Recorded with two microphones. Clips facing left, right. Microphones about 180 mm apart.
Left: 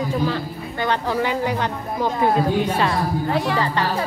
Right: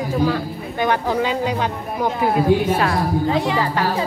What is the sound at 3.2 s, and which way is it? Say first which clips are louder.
Speech: even; 20° right (ahead or behind).